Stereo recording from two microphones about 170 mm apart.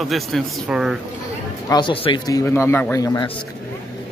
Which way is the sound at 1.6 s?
25° left (ahead or behind).